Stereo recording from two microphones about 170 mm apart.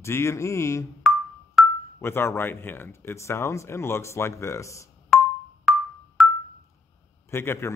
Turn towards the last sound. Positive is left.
turn(degrees=15)  # may be behind; listen again after turning